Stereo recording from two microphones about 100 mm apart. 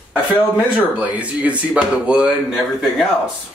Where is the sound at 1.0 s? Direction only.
15° right (ahead or behind).